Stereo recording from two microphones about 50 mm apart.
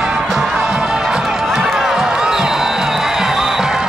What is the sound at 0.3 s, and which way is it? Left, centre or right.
Music, centre.